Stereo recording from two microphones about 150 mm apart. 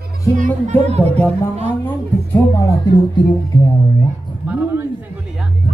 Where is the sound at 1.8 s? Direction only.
10° left (ahead or behind).